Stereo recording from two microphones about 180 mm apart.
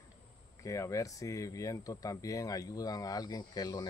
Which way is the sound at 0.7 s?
15° left (ahead or behind).